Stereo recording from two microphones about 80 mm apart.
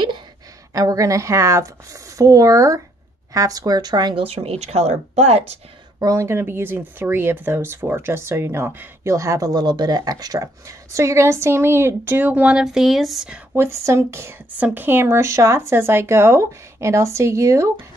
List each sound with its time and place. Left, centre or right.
0.7 s a woman's voice: right
5.9 s speech: right
6.2 s speech: right
9.1 s speech: right; by 13.3 s centre
13.6 s speech: right
14.6 s speech: right